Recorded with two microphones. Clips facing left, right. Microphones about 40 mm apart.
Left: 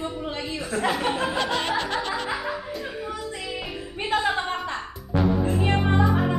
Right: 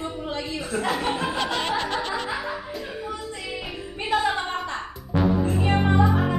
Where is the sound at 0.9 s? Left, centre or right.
Centre.